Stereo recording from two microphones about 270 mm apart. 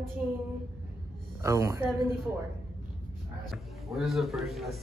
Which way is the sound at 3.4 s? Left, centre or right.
Centre.